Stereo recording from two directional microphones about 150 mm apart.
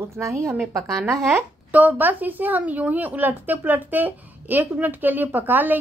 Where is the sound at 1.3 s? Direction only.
10° right (ahead or behind).